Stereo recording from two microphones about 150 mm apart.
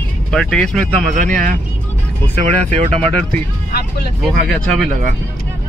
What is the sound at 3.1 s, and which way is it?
Speech, 5° left (ahead or behind).